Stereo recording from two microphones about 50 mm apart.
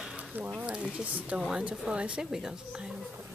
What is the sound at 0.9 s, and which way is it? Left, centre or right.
Speech, right.